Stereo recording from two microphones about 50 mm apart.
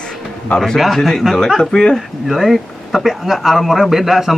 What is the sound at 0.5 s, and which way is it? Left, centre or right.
Speech, centre.